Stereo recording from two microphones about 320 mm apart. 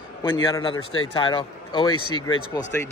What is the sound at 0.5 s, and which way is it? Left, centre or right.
A man's voice, centre.